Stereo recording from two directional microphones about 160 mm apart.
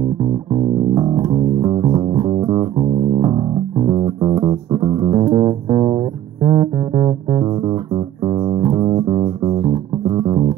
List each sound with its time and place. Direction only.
0.2 s music: 30° right (ahead or behind)